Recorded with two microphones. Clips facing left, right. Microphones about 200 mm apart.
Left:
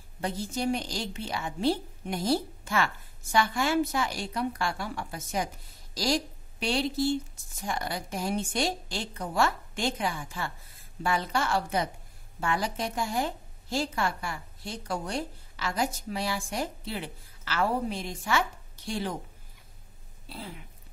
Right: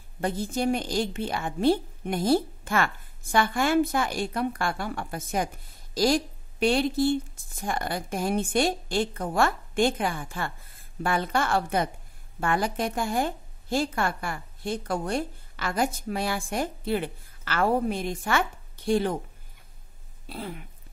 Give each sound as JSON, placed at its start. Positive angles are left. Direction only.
{"t": 0.2, "sound": "a woman's voice", "side_deg": -55}
{"t": 20.2, "sound": "a woman's voice", "side_deg": -55}